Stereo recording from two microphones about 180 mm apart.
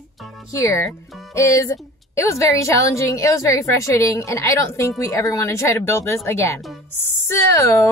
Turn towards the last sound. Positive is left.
turn(degrees=15)  # may be behind; listen again after turning